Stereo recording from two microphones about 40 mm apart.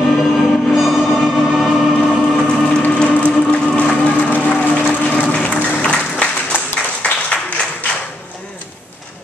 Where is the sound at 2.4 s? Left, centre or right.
Centre.